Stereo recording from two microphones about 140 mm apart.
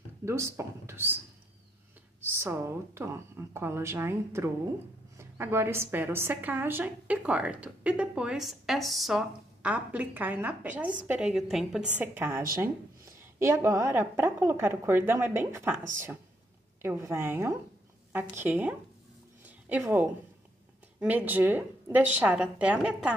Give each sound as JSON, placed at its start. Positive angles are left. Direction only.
{"t": 0.2, "sound": "speech", "side_deg": -20}
{"t": 2.3, "sound": "a woman's voice", "side_deg": -15}
{"t": 12.0, "sound": "a woman's voice", "side_deg": -15}
{"t": 19.4, "sound": "a sound", "side_deg": -10}
{"t": 21.0, "sound": "a woman's voice", "side_deg": -10}